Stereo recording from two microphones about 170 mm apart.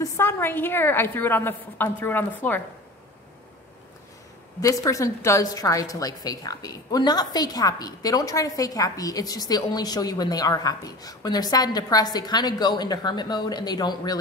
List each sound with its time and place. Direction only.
0.0 s a woman's voice: 15° left (ahead or behind)
4.6 s a woman's voice: 20° left (ahead or behind)